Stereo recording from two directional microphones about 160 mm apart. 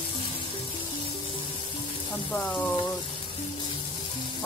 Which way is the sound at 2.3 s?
10° left (ahead or behind).